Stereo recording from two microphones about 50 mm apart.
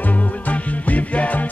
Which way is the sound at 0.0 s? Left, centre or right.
Left.